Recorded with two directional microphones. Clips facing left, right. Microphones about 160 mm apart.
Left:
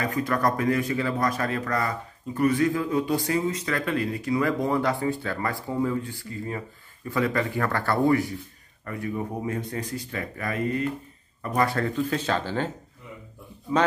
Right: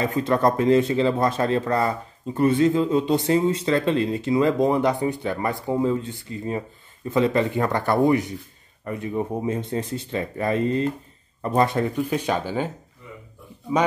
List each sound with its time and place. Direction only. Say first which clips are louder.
0.0 s speech: right 4 dB; 25° right (ahead or behind)